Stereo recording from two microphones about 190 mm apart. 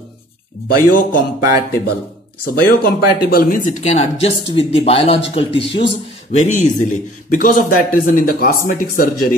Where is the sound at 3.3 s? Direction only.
50° left (ahead or behind).